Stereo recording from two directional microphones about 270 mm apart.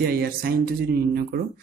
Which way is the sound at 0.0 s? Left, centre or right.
Right.